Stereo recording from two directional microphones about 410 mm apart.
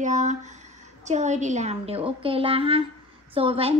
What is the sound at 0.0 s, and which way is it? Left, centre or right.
A woman's voice, centre.